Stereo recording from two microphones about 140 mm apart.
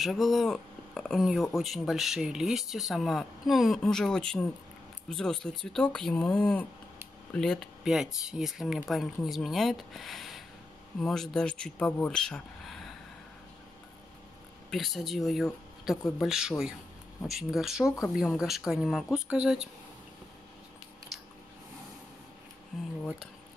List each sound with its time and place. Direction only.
0.0 s speech: centre (ahead or behind)
14.7 s speech: centre (ahead or behind)
17.8 s speech: 20° left (ahead or behind)
18.1 s speech: centre (ahead or behind)
22.7 s speech: centre (ahead or behind)